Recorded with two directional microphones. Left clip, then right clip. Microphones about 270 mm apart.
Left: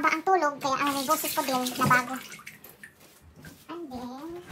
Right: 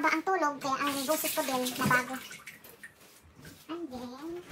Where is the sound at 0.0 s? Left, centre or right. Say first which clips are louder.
Left 4 dB; left.